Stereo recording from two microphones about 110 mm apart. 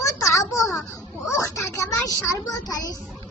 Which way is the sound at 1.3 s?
30° left (ahead or behind).